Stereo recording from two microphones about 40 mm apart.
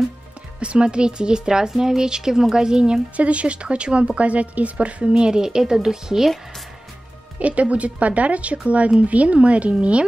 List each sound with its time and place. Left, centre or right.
0.6 s speech: right
3.2 s speech: right; by 6.3 s centre
7.3 s a woman's voice: right